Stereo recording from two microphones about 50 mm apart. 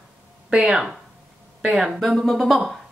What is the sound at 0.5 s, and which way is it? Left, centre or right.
A woman's voice, centre.